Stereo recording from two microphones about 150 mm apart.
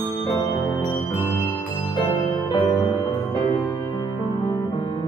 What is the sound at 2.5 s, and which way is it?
Music, 30° left (ahead or behind).